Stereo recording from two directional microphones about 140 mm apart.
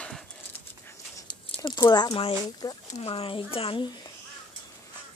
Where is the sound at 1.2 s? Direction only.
35° left (ahead or behind).